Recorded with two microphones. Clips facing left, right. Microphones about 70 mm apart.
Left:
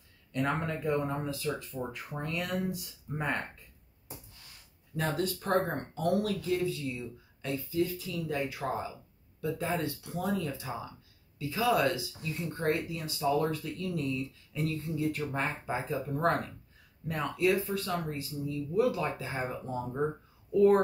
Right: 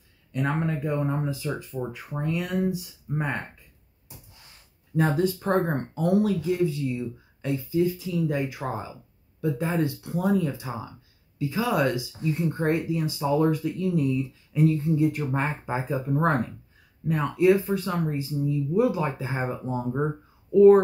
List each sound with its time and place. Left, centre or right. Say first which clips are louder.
0.3 s speech: right 4 dB; centre
4.9 s speech: right 8 dB; right
20.5 s speech: right 8 dB; centre